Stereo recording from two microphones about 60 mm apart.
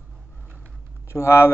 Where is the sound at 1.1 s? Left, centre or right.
Left.